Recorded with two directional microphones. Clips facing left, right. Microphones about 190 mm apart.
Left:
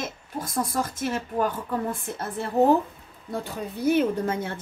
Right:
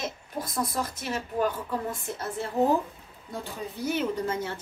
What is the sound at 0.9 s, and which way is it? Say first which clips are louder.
Speech: left 4 dB; 50° left (ahead or behind).